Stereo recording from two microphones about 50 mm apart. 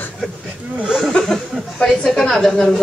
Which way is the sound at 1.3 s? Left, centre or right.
Centre.